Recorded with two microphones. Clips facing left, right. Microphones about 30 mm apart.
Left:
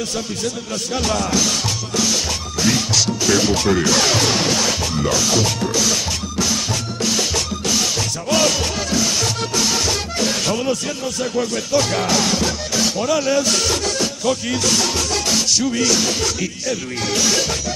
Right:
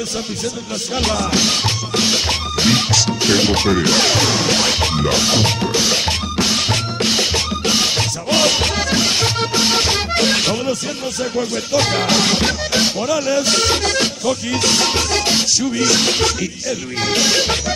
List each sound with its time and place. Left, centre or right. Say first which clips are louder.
1.3 s music: right 3 dB; right
4.5 s music: right 3 dB; right
10.1 s music: right 7 dB; right
11.7 s speech: right 2 dB; right
13.0 s speech: even; centre
13.4 s music: right 2 dB; right
15.9 s music: right 3 dB; right
17.0 s music: right 3 dB; right